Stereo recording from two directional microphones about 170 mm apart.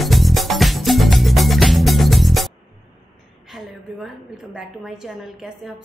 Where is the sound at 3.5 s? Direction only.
Centre (ahead or behind).